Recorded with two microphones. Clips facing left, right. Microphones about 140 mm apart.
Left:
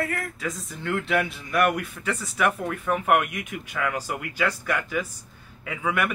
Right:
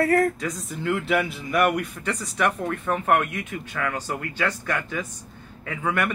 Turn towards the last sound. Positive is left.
turn(degrees=5)  # may be behind; listen again after turning